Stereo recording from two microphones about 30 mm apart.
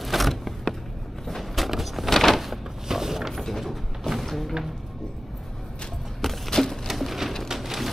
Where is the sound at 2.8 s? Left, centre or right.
Centre.